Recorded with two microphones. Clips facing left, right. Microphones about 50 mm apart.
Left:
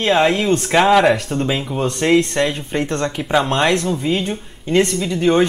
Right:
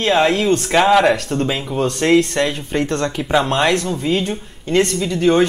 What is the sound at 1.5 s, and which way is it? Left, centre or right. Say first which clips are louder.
Speech: even; centre.